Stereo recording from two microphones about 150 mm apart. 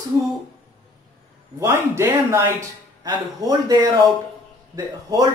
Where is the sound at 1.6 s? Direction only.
15° right (ahead or behind).